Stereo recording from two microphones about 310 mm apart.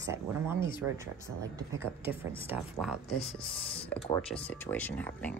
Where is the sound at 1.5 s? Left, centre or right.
Centre.